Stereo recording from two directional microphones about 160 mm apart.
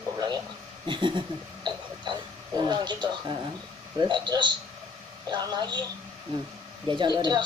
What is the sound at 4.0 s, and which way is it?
Speech, 25° right (ahead or behind).